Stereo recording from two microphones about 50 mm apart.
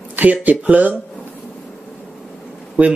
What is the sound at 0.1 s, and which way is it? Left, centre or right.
Speech, right.